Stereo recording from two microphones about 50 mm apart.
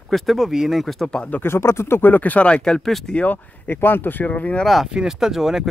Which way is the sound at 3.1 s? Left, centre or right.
Left.